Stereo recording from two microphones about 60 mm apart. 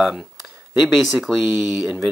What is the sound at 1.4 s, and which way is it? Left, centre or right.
Speech, right.